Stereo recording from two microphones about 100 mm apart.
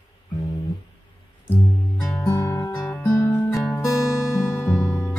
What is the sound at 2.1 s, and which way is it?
Music, 25° left (ahead or behind).